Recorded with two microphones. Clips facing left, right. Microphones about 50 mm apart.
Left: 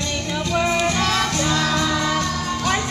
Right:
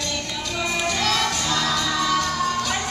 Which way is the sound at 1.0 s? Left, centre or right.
Centre.